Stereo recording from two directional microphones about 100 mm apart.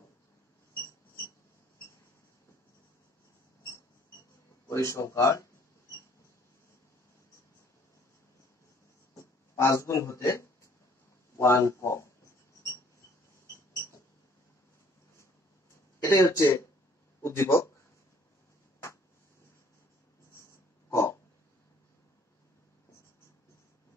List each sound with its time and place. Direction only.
4.6 s speech: 30° left (ahead or behind)
9.1 s a sound: 30° left (ahead or behind)
11.3 s a man's voice: 30° left (ahead or behind)
16.1 s speech: 30° left (ahead or behind)
20.9 s dog: 30° left (ahead or behind)